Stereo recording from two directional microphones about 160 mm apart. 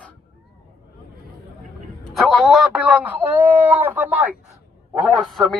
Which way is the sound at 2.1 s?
Centre (ahead or behind).